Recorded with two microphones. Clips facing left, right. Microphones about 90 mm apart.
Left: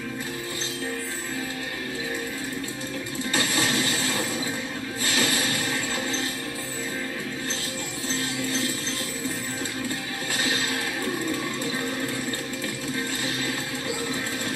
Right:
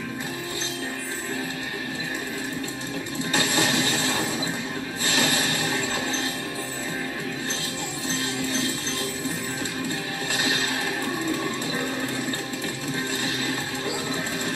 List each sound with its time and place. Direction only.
3.3 s music: 30° right (ahead or behind)